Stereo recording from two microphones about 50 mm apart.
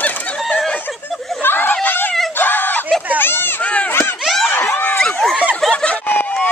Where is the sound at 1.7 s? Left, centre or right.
Left.